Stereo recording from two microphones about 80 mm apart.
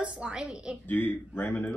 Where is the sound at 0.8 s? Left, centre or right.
Left.